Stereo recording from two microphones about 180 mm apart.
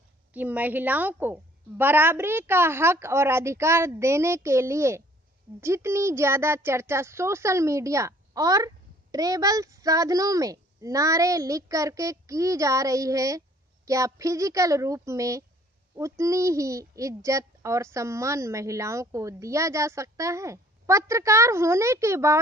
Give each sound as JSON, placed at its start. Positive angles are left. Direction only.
{"t": 0.3, "sound": "speech", "side_deg": -10}